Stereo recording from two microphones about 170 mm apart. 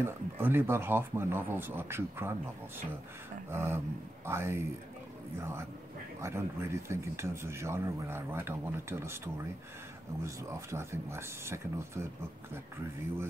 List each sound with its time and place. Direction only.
0.0 s a man's voice: 15° right (ahead or behind)
3.4 s a man's voice: 15° right (ahead or behind)